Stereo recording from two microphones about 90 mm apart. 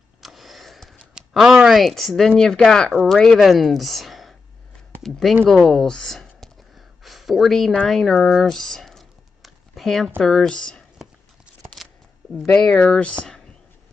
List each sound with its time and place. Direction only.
0.2 s a sound: centre (ahead or behind)
0.9 s speech: 10° right (ahead or behind); by 10.8 s 10° left (ahead or behind)
12.5 s speech: 10° left (ahead or behind)